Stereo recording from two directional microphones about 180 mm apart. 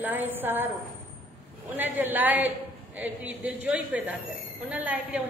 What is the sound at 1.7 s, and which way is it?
A woman's voice, 10° right (ahead or behind).